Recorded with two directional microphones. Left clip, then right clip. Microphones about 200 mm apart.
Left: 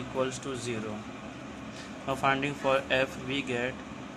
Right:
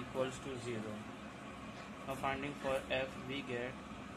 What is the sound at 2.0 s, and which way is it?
Speech, 20° left (ahead or behind).